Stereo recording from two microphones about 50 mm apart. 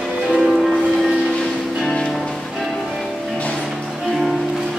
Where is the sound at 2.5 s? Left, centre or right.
Centre.